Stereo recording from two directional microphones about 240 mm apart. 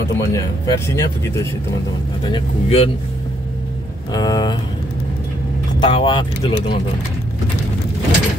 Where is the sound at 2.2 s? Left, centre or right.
Left.